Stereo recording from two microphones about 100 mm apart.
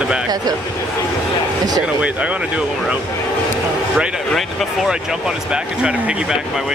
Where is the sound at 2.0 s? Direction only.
10° right (ahead or behind).